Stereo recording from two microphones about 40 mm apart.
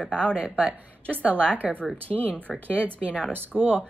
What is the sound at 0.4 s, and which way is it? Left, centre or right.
Speech, right.